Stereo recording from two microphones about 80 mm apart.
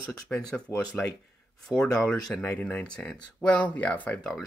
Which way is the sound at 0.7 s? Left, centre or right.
Left.